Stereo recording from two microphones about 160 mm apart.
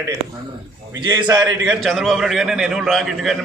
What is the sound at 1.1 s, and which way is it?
Speech, 25° right (ahead or behind).